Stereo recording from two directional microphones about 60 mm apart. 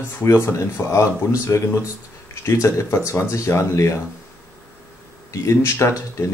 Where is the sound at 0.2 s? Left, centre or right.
Left.